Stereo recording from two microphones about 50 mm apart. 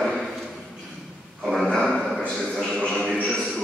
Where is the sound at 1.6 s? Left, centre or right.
Centre.